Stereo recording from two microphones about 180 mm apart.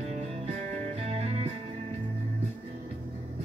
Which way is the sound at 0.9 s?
35° right (ahead or behind).